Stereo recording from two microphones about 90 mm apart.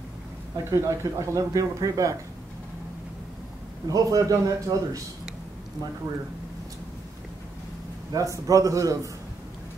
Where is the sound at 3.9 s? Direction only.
40° right (ahead or behind).